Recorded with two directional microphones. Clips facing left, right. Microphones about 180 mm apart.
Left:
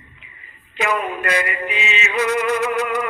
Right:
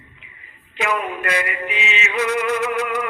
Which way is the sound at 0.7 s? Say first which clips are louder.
Left 1 dB; 40° left (ahead or behind).